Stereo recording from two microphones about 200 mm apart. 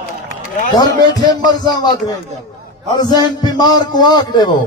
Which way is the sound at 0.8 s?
20° left (ahead or behind).